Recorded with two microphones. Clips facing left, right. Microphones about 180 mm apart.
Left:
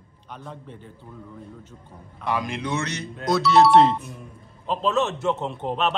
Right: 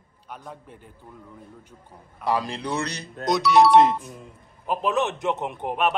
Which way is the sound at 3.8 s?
20° right (ahead or behind).